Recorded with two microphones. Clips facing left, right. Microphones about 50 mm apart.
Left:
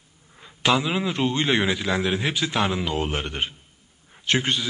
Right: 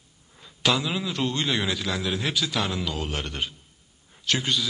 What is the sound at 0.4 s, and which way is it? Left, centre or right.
A man's voice, left.